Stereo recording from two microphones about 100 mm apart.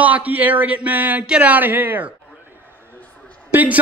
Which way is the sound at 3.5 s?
15° right (ahead or behind).